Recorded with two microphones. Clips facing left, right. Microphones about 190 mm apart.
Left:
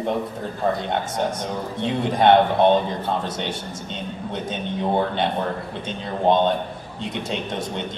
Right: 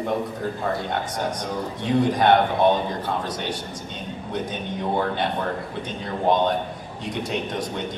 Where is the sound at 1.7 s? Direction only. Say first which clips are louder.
Right 1 dB; 25° left (ahead or behind).